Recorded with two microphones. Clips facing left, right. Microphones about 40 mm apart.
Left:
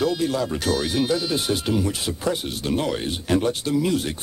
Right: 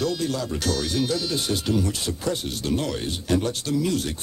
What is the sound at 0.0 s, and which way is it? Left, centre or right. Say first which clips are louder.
Speech: left 3 dB; centre.